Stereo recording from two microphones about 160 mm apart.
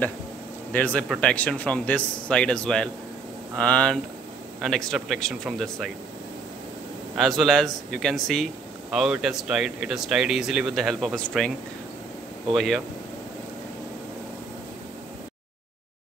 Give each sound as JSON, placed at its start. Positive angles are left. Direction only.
{"t": 0.7, "sound": "speech", "side_deg": 10}
{"t": 7.2, "sound": "speech", "side_deg": 0}
{"t": 12.5, "sound": "speech", "side_deg": 0}